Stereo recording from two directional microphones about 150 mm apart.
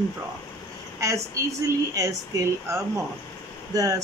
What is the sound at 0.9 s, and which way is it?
A woman's voice, 20° right (ahead or behind).